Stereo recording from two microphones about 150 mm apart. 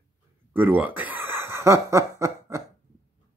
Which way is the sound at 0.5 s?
10° right (ahead or behind).